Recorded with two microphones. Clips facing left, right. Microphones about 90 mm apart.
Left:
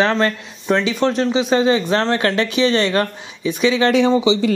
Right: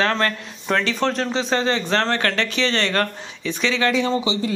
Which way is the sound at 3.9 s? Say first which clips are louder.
Left 6 dB; 85° left.